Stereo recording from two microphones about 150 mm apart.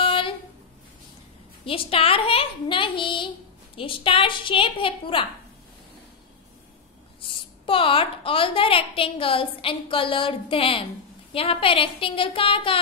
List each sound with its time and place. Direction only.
0.0 s a sound: 35° left (ahead or behind)
1.7 s a woman's voice: 40° left (ahead or behind)
7.6 s a woman's voice: 35° left (ahead or behind)